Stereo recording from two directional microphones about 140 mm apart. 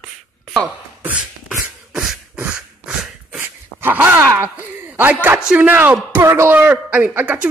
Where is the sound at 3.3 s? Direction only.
15° right (ahead or behind).